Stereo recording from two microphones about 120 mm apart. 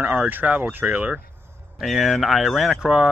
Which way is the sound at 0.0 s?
15° right (ahead or behind).